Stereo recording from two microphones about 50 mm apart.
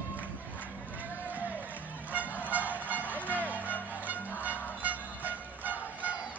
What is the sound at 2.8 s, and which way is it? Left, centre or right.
Vehicle, right.